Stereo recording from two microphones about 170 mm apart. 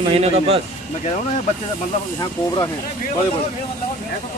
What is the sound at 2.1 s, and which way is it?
Speech, 25° left (ahead or behind).